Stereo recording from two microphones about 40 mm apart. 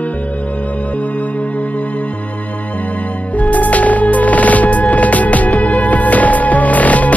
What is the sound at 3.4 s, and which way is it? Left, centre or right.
Music, left.